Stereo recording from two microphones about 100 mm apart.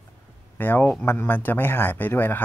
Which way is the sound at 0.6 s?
20° left (ahead or behind).